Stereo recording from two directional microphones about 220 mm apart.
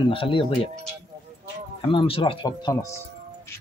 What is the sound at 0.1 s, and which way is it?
Speech, 25° left (ahead or behind).